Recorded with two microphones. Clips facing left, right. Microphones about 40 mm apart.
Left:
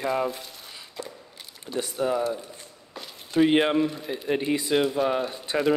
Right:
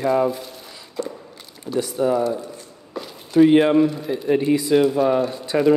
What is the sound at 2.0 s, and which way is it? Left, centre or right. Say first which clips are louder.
Speech: right 6 dB; left.